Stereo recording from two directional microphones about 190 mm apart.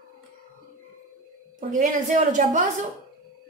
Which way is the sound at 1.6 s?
40° right (ahead or behind).